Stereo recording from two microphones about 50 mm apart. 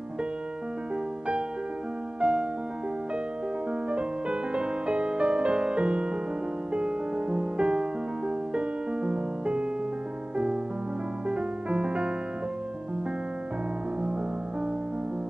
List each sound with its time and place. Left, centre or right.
2.1 s music: right
3.9 s music: right